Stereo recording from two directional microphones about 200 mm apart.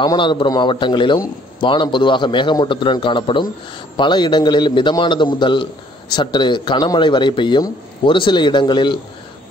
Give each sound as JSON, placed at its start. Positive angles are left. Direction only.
{"t": 0.0, "sound": "a man's voice", "side_deg": 20}